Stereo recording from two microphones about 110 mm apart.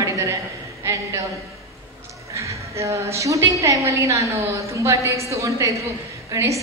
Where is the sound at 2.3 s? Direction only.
30° right (ahead or behind).